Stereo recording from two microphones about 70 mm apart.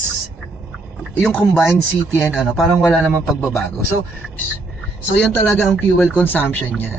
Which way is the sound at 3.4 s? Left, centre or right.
Left.